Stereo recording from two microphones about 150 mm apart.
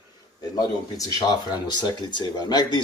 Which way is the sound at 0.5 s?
25° left (ahead or behind).